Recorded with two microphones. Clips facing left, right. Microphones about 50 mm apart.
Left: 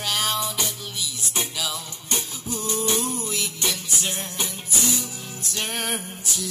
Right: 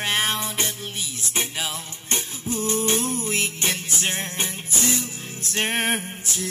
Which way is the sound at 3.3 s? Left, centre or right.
Right.